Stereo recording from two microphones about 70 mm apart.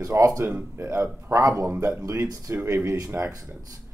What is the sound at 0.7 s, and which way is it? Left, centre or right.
Speech, right.